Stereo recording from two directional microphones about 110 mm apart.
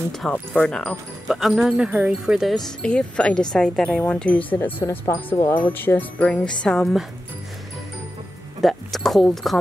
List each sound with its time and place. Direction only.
0.2 s speech: 5° left (ahead or behind)
4.7 s speech: 25° left (ahead or behind); by 7.1 s centre (ahead or behind)
8.5 s speech: centre (ahead or behind)